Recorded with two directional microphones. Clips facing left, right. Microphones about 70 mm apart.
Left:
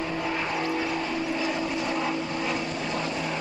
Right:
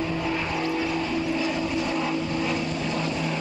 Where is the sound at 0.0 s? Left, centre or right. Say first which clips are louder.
Right 2 dB; left.